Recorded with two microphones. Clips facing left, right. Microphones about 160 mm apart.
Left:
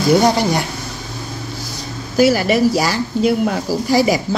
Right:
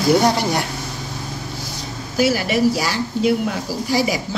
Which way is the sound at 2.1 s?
40° left (ahead or behind).